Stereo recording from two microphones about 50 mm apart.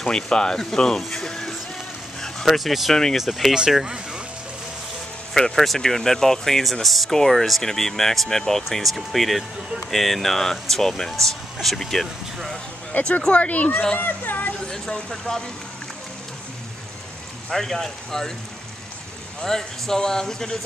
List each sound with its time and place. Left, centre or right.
0.0 s speech: centre
2.9 s speech: centre
3.5 s speech: centre
5.3 s speech: centre
12.9 s speech: left
14.6 s speech: centre
17.5 s speech: centre
19.4 s speech: centre